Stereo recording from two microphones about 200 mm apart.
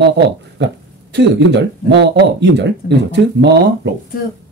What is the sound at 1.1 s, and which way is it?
Speech, 60° right (ahead or behind).